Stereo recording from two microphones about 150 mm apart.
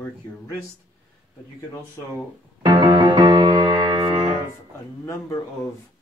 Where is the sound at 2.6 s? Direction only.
25° right (ahead or behind).